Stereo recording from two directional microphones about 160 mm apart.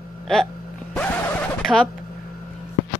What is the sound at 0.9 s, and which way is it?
Vehicle, 10° left (ahead or behind).